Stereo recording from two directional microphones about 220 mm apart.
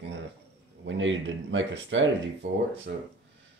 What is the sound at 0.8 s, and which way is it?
Speech, 60° right (ahead or behind).